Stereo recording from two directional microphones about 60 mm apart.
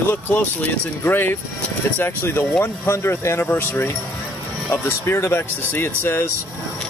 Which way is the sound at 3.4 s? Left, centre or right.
Left.